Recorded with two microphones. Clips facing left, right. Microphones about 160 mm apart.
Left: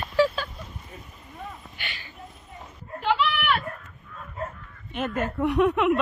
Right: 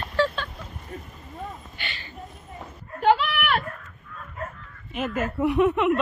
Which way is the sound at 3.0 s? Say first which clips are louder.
Right 4 dB; 45° right (ahead or behind).